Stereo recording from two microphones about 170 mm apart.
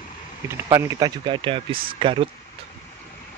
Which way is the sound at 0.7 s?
20° right (ahead or behind).